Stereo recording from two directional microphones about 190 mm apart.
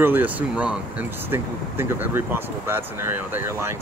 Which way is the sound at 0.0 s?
10° right (ahead or behind).